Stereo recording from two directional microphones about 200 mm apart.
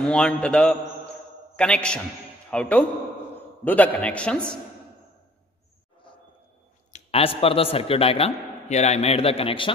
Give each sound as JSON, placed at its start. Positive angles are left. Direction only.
{"t": 0.0, "sound": "a man's voice", "side_deg": 5}
{"t": 6.9, "sound": "a man's voice", "side_deg": 30}